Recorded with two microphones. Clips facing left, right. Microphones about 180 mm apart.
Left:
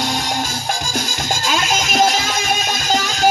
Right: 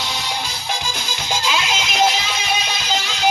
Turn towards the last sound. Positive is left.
turn(degrees=45)  # may be behind; listen again after turning